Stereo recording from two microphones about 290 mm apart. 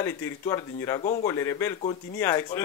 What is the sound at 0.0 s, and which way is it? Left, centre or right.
Speech, centre.